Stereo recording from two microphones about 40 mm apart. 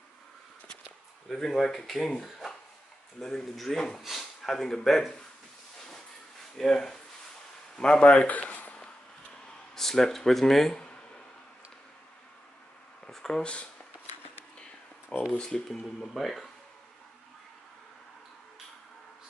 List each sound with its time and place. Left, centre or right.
1.3 s speech: centre
6.6 s speech: centre
7.7 s speech: left
8.3 s a sound: left
9.8 s speech: centre
13.1 s a sound: centre
13.4 s speech: left
15.3 s speech: centre